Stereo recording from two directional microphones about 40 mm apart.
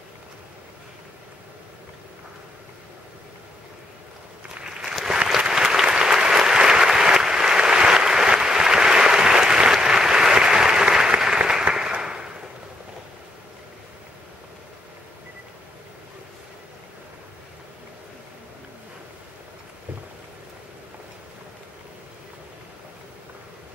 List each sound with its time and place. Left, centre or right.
4.6 s applause: centre